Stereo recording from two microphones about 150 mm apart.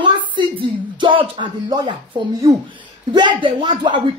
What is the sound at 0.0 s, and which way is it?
Speech, 35° right (ahead or behind).